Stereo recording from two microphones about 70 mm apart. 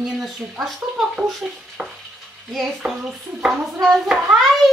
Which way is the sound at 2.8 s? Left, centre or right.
Centre.